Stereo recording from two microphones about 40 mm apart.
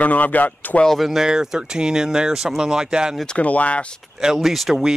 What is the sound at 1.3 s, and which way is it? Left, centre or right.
Speech, centre.